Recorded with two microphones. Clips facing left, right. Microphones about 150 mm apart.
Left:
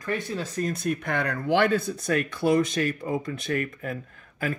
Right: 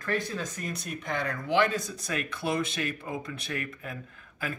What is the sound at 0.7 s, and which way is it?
Speech, 55° left (ahead or behind).